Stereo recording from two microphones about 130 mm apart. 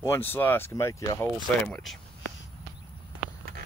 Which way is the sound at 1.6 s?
5° left (ahead or behind).